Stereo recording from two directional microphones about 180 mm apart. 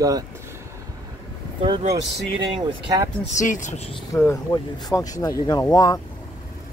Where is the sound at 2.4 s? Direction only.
25° right (ahead or behind).